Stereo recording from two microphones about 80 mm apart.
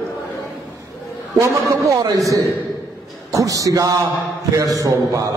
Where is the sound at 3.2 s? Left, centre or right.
Right.